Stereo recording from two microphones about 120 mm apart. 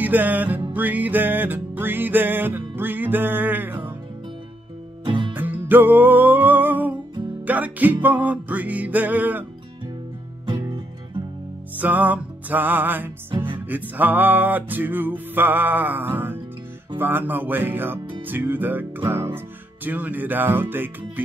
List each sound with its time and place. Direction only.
0.0 s music: 15° right (ahead or behind)
5.0 s music: 40° right (ahead or behind)
5.3 s music: 15° right (ahead or behind)
11.8 s music: 15° right (ahead or behind)